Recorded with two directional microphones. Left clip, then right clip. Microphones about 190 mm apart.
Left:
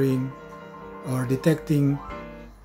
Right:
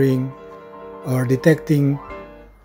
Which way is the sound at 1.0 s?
35° right (ahead or behind).